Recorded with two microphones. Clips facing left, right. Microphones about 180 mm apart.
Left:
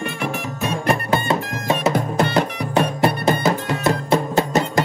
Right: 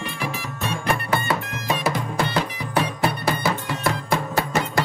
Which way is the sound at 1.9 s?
60° left (ahead or behind).